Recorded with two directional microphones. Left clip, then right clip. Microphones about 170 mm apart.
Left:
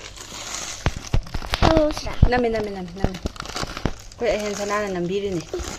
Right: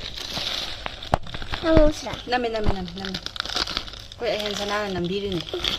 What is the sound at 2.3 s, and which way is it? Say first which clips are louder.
Speech: left 3 dB; 35° left (ahead or behind).